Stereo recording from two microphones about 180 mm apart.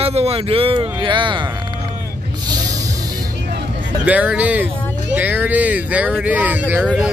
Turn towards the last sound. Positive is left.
turn(degrees=-5)  # may be behind; listen again after turning